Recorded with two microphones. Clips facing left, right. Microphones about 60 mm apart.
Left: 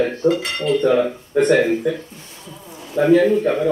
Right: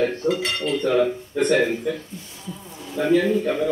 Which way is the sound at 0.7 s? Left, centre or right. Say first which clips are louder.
Left 4 dB; centre.